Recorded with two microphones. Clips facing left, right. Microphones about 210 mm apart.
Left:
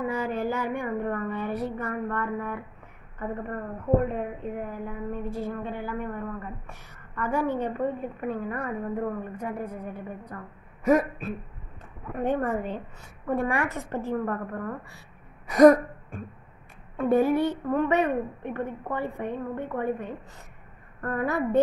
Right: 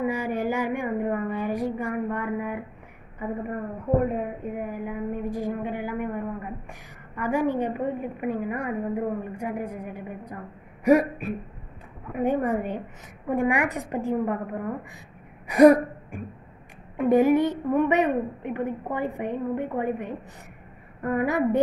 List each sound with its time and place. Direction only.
0.0 s a sound: 15° right (ahead or behind)
3.2 s a woman's voice: 10° right (ahead or behind)
10.8 s a sound: 15° right (ahead or behind)
12.2 s a woman's voice: 10° right (ahead or behind)
15.4 s gasp: 10° right (ahead or behind)
16.9 s a woman's voice: 15° right (ahead or behind)